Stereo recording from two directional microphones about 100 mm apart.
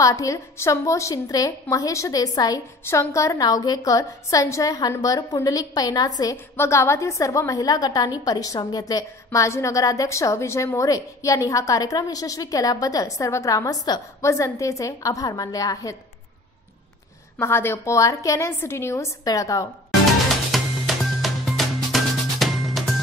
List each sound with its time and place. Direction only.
0.0 s a woman's voice: 35° left (ahead or behind)
2.8 s a woman's voice: 25° left (ahead or behind)
6.3 s a woman's voice: 25° left (ahead or behind)
17.4 s a woman's voice: 25° left (ahead or behind)
20.5 s music: centre (ahead or behind)